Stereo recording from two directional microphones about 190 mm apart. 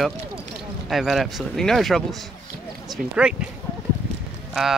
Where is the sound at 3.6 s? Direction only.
15° left (ahead or behind).